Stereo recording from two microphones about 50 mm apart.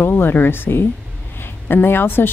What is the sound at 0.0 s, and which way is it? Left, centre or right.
A woman's voice, left.